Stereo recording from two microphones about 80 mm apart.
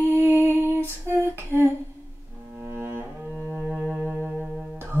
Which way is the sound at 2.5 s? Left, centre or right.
Right.